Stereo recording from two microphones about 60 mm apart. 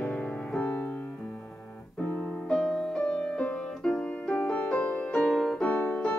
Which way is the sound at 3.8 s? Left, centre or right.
Centre.